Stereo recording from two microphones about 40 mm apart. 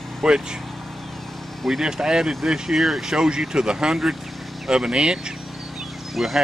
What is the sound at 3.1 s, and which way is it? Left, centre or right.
Speech, centre.